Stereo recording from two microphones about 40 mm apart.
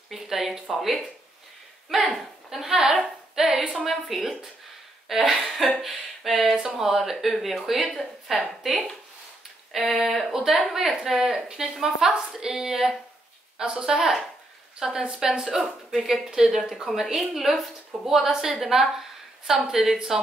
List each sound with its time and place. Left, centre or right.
0.1 s speech: centre
2.1 s speech: centre
2.7 s speech: centre
6.5 s speech: centre
14.9 s a woman's voice: right
15.1 s a woman's voice: centre